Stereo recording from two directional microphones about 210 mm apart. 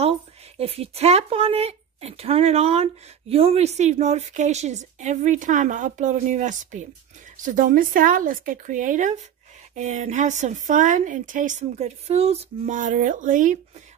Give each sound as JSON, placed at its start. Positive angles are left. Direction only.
{"t": 0.6, "sound": "speech", "side_deg": -30}